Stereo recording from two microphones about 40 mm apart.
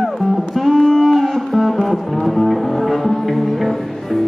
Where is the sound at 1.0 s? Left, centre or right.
Centre.